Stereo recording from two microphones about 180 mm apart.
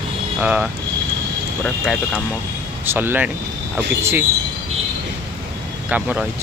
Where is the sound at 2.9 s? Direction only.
10° right (ahead or behind).